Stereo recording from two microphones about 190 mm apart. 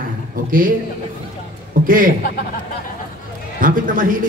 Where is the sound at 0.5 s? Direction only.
45° right (ahead or behind).